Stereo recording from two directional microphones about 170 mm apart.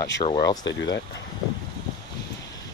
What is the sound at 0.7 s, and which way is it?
Speech, 90° left.